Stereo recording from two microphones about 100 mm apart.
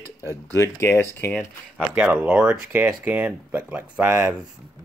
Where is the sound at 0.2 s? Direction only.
30° left (ahead or behind).